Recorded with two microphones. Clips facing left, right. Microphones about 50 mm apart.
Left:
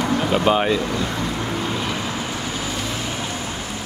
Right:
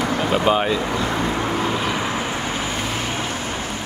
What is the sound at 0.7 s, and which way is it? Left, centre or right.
Speech, centre.